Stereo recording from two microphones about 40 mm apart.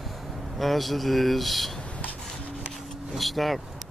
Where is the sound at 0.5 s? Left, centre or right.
Centre.